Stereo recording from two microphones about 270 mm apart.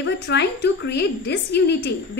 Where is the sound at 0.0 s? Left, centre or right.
Left.